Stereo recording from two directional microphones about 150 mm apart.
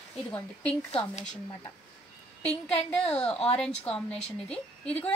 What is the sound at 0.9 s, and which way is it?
Speech, 40° left (ahead or behind).